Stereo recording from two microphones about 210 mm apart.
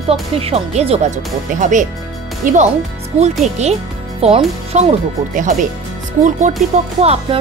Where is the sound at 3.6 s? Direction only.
30° right (ahead or behind).